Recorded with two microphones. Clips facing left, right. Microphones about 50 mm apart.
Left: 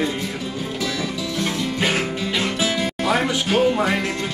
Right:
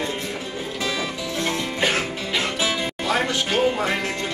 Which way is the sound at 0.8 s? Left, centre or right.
Right.